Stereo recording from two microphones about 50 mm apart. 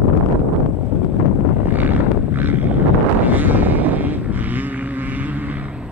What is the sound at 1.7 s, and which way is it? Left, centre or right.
Vehicle, right.